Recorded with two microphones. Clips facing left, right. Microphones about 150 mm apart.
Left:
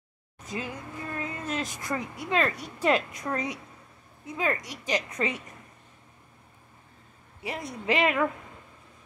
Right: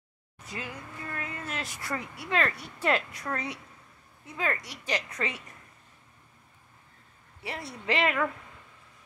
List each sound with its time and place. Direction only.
0.4 s a woman's voice: 20° left (ahead or behind)
7.4 s a woman's voice: 20° left (ahead or behind)